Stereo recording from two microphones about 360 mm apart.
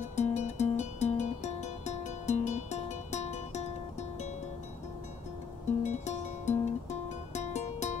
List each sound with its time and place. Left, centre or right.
0.0 s music: centre
5.9 s music: centre